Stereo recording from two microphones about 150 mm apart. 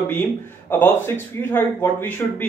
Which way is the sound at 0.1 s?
15° left (ahead or behind).